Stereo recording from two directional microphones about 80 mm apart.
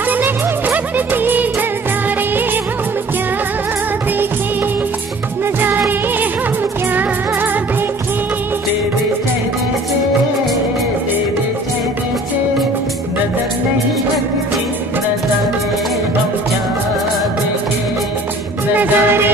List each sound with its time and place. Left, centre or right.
0.1 s music: right
2.0 s music of bollywood: right
18.8 s music: right